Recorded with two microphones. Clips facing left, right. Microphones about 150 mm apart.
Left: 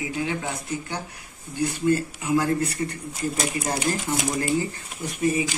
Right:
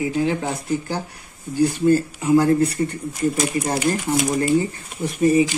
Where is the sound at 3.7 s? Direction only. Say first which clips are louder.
Right 5 dB; 25° right (ahead or behind).